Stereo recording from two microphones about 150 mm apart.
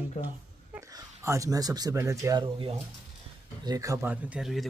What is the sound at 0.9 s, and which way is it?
Speech, 20° right (ahead or behind).